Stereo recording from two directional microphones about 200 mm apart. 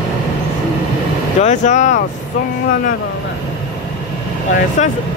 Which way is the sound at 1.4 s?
35° left (ahead or behind).